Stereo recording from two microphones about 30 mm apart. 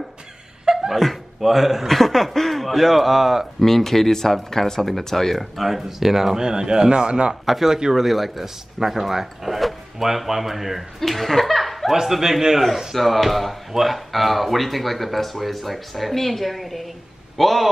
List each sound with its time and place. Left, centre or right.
0.7 s laughter: right
1.4 s speech: centre
3.6 s speech: centre
5.6 s speech: centre; by 7.3 s right
7.4 s speech: centre
11.0 s speech: centre
11.9 s speech: centre
12.9 s speech: centre